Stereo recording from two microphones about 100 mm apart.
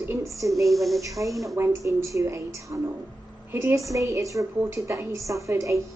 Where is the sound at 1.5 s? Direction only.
30° right (ahead or behind).